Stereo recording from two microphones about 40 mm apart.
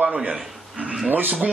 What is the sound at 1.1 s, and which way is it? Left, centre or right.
Speech, right.